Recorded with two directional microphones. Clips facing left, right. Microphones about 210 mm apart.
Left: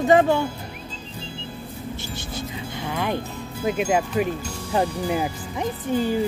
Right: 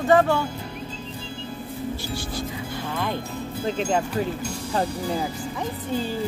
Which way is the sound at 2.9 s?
15° left (ahead or behind).